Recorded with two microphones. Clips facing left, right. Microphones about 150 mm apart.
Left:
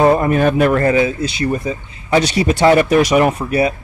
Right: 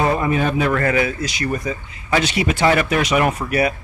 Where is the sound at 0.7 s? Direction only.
30° left (ahead or behind).